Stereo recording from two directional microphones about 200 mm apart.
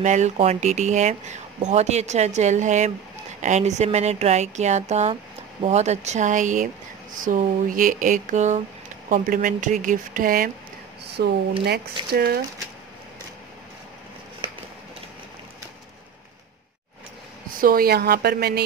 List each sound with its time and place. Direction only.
0.0 s speech: 35° right (ahead or behind)
11.1 s a sound: 55° right (ahead or behind)
11.6 s speech: 50° right (ahead or behind)
17.6 s speech: 45° right (ahead or behind)